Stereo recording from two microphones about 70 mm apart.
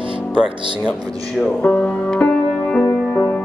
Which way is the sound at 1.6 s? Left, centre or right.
Left.